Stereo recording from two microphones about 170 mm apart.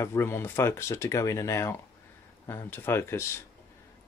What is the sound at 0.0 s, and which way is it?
Speech, 15° left (ahead or behind).